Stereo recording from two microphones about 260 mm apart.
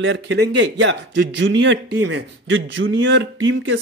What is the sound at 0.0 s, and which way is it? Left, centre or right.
Speech, right.